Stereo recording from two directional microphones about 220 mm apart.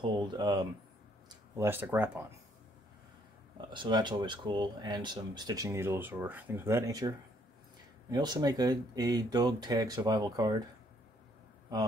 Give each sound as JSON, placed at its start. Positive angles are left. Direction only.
{"t": 0.0, "sound": "speech", "side_deg": -20}
{"t": 3.7, "sound": "speech", "side_deg": -20}